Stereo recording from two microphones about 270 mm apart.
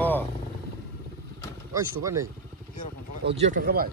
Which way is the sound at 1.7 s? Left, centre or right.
Centre.